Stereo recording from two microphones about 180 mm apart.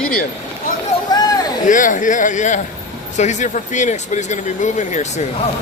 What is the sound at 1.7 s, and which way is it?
Speech, 45° left (ahead or behind).